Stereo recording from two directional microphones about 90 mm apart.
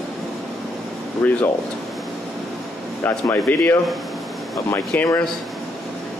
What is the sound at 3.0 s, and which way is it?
A man's voice, 25° left (ahead or behind).